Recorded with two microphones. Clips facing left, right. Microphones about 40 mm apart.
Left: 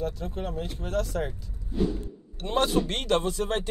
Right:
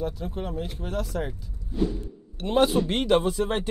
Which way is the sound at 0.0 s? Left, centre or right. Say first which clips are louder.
Right 1 dB; centre.